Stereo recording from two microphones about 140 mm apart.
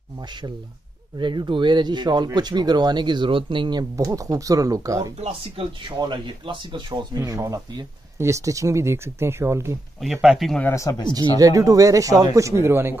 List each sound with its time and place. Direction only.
1.1 s speech: 30° right (ahead or behind)
3.9 s speech: 25° right (ahead or behind)
5.6 s speech: 35° right (ahead or behind); by 9.8 s 20° right (ahead or behind)
10.2 s speech: centre (ahead or behind)
10.6 s speech: 20° left (ahead or behind)
11.3 s speech: 25° right (ahead or behind)